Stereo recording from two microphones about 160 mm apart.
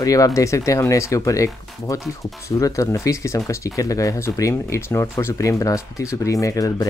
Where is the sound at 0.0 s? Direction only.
20° left (ahead or behind).